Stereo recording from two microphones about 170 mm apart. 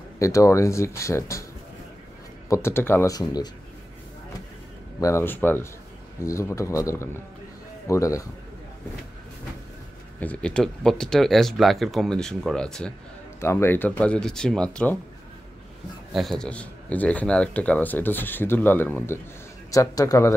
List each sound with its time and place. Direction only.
0.2 s speech: 20° left (ahead or behind)
2.5 s speech: 15° left (ahead or behind)
5.0 s a man's voice: 15° left (ahead or behind)
10.2 s speech: 5° left (ahead or behind)
13.4 s speech: 15° left (ahead or behind)
16.1 s a man's voice: centre (ahead or behind); by 20.3 s 20° left (ahead or behind)